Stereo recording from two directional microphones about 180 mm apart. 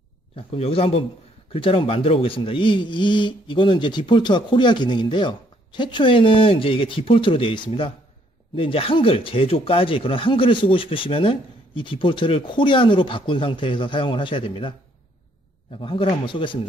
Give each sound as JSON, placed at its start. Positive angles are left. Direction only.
{"t": 0.4, "sound": "a man's voice", "side_deg": 30}
{"t": 15.8, "sound": "speech", "side_deg": 30}